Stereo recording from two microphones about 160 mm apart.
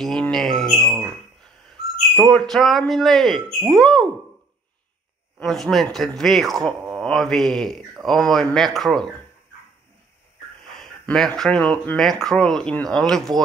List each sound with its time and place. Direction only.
0.0 s a sound: 5° left (ahead or behind)
2.1 s speech: centre (ahead or behind)
5.4 s speech: centre (ahead or behind)
10.8 s speech: 5° left (ahead or behind)